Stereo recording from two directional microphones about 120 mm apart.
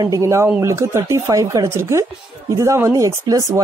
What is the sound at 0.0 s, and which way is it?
Speech, 25° right (ahead or behind).